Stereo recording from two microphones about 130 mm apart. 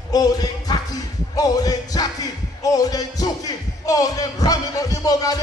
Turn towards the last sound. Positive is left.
turn(degrees=30)  # may be behind; listen again after turning